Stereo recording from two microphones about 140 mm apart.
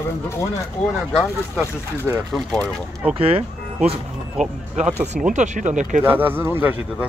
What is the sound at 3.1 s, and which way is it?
Speech, 45° right (ahead or behind).